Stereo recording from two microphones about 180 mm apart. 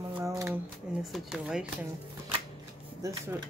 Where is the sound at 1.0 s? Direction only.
5° right (ahead or behind).